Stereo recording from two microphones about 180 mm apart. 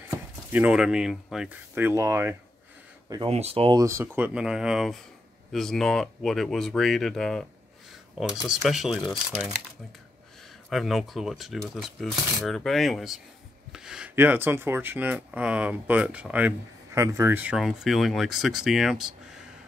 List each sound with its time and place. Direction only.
0.5 s speech: 5° right (ahead or behind)
3.3 s speech: 35° right (ahead or behind)
3.8 s speech: 15° right (ahead or behind)
10.7 s speech: centre (ahead or behind)